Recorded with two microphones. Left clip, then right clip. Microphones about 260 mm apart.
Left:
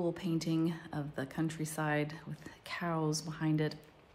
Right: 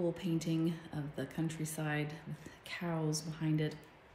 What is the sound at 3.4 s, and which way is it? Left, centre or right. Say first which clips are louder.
Speech: left 3 dB; left.